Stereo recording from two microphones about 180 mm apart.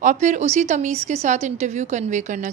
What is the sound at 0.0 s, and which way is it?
A woman's voice, 45° right (ahead or behind).